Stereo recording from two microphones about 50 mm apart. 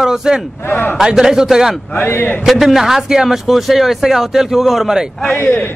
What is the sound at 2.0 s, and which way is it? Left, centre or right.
Speech, left.